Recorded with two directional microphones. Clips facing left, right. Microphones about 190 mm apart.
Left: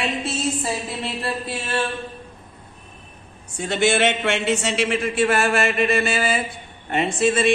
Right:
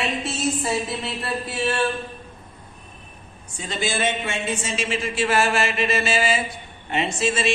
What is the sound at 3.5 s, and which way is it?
Speech, 65° left (ahead or behind).